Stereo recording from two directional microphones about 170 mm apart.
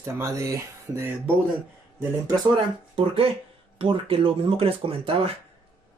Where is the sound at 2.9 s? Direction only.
35° right (ahead or behind).